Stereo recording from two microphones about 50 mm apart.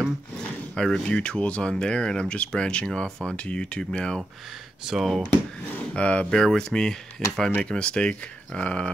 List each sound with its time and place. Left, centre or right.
0.7 s speech: centre
1.0 s speech: left
5.0 s speech: centre
5.9 s speech: left